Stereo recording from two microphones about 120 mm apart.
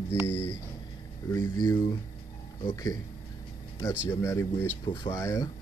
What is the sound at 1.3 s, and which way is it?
Speech, 30° left (ahead or behind).